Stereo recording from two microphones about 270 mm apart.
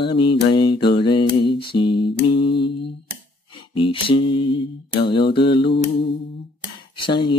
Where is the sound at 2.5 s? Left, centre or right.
Left.